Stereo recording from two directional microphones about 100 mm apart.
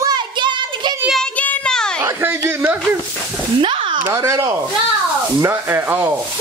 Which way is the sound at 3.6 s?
55° right (ahead or behind).